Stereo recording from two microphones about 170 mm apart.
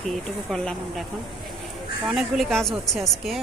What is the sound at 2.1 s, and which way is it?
Speech, centre (ahead or behind).